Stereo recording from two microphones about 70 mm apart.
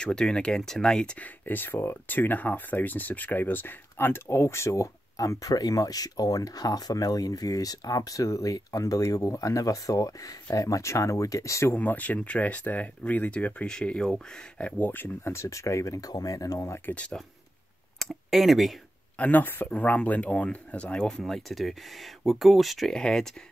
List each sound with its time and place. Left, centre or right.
0.0 s speech: centre
1.4 s speech: left
11.7 s speech: left; by 14.7 s centre
14.8 s speech: left
15.2 s speech: left
16.9 s speech: centre
17.9 s speech: centre
19.1 s speech: left; by 23.2 s centre